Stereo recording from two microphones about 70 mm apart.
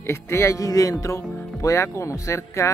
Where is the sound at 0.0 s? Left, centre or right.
Left.